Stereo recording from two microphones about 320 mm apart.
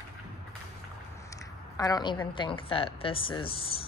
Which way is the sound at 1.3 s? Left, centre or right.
Centre.